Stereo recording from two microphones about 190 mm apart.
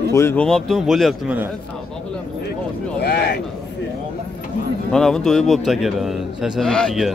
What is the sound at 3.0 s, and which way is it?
Speech, 60° left (ahead or behind).